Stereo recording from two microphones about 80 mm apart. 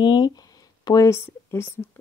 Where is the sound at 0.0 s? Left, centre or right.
Left.